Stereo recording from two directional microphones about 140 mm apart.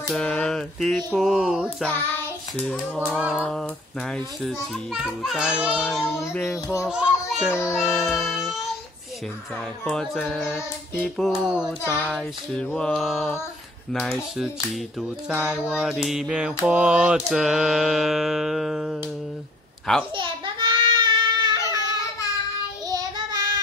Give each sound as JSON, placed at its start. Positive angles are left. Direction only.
{"t": 0.1, "sound": "a child's voice", "side_deg": 5}
{"t": 1.9, "sound": "child singing", "side_deg": 15}
{"t": 2.6, "sound": "a sound", "side_deg": 10}
{"t": 3.1, "sound": "a sound", "side_deg": -10}
{"t": 3.3, "sound": "a child's voice", "side_deg": 5}
{"t": 9.8, "sound": "a child's voice", "side_deg": 5}
{"t": 11.8, "sound": "speech", "side_deg": 20}
{"t": 12.1, "sound": "a child's voice", "side_deg": 0}
{"t": 20.2, "sound": "child singing", "side_deg": -35}
{"t": 22.8, "sound": "child singing", "side_deg": -30}